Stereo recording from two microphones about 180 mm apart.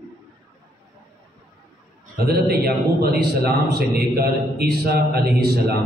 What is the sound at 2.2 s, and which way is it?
A man's voice, 60° right (ahead or behind).